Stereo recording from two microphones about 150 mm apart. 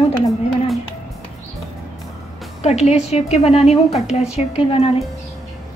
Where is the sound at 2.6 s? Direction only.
45° left (ahead or behind).